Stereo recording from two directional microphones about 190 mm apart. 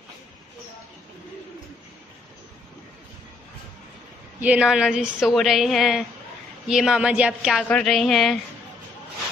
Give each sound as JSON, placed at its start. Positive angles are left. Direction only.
{"t": 4.4, "sound": "a woman's voice", "side_deg": -5}